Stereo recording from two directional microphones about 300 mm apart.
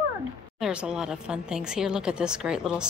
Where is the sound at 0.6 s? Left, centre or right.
Centre.